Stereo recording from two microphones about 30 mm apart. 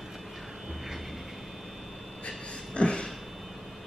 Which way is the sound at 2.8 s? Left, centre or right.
Left.